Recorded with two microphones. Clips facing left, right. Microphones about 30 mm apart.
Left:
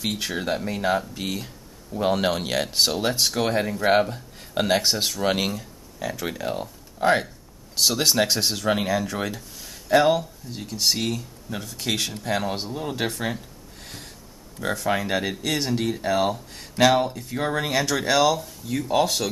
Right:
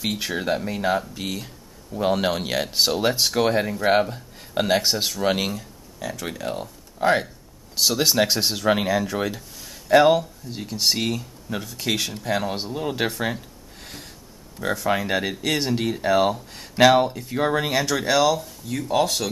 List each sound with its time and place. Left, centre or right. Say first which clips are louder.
0.0 s speech: right 1 dB; centre
14.6 s speech: right 1 dB; centre